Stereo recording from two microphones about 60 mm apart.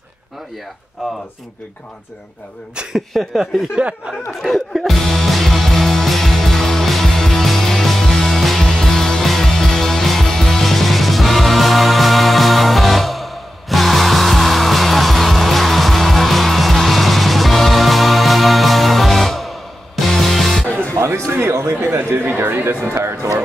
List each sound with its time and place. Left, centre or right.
1.0 s speech: centre
2.7 s speech: centre
3.1 s speech: centre
3.7 s speech: right
4.3 s music: centre
20.6 s music: left
20.9 s music: right